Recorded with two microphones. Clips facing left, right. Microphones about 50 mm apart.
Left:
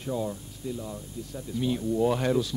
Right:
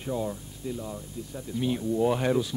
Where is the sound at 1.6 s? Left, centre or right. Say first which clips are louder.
Even; centre.